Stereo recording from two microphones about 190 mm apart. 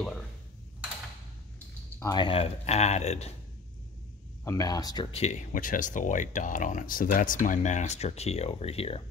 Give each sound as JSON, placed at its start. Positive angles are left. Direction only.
{"t": 2.0, "sound": "speech", "side_deg": 20}
{"t": 4.5, "sound": "speech", "side_deg": 20}
{"t": 5.1, "sound": "speech", "side_deg": 35}